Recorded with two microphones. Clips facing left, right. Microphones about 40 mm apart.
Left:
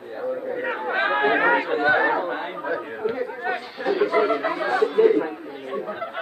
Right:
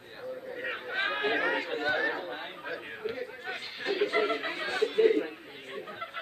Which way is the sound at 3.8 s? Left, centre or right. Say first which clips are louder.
Left 8 dB; left.